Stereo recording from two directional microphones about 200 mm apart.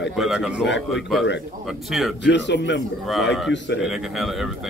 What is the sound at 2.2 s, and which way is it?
Speech, 60° left (ahead or behind).